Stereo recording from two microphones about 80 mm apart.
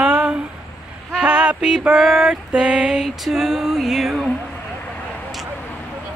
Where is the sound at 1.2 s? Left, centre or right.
Centre.